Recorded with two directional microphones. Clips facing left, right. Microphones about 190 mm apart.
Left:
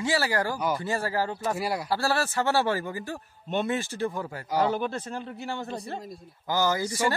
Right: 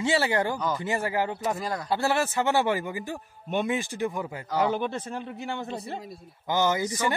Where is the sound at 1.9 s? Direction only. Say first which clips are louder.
Right 4 dB; 20° right (ahead or behind).